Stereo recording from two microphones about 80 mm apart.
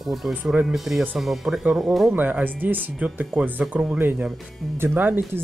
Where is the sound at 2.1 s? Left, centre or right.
Right.